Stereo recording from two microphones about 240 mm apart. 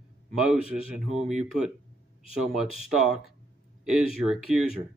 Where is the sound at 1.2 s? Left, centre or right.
Centre.